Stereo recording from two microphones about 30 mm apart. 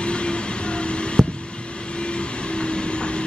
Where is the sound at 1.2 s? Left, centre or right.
Centre.